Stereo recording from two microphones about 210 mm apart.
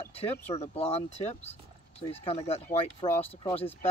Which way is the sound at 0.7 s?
30° left (ahead or behind).